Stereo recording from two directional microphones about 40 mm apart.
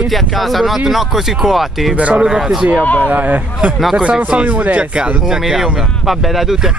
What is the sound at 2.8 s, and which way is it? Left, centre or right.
Speech, left.